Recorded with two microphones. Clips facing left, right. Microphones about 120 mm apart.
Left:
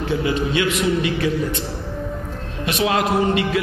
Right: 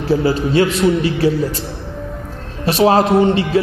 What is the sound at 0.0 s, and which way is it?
A man's voice, 35° right (ahead or behind).